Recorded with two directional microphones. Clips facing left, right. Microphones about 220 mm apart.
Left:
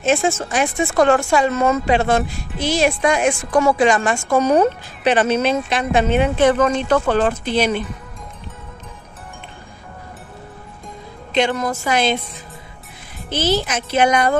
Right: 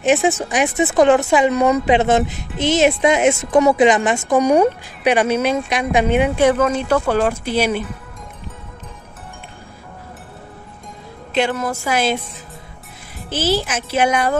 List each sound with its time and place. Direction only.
0.0 s speech: 15° right (ahead or behind)
11.3 s speech: 5° right (ahead or behind)
13.3 s speech: 5° right (ahead or behind)